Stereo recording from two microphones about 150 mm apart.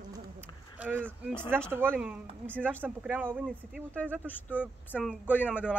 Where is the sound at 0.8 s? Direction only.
10° right (ahead or behind).